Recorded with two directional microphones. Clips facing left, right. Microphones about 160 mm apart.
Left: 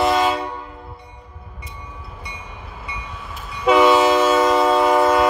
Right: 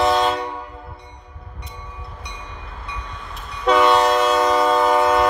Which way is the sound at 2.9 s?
5° left (ahead or behind).